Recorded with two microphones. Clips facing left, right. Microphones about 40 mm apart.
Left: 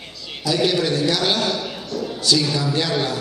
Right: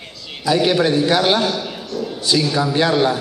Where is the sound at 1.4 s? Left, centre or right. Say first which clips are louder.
Right 2 dB; centre.